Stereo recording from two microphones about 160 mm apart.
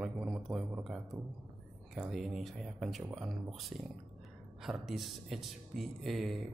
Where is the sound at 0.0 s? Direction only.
5° right (ahead or behind).